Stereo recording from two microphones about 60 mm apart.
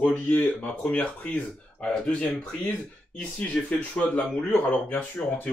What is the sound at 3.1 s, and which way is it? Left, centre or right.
Speech, left.